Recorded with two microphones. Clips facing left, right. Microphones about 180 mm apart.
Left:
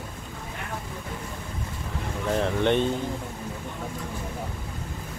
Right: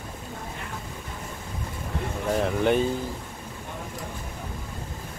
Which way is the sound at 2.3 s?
5° right (ahead or behind).